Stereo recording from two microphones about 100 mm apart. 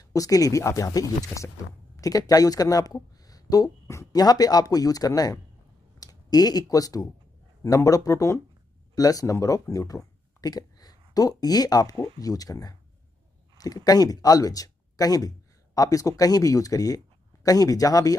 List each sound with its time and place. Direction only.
0.1 s speech: 35° left (ahead or behind)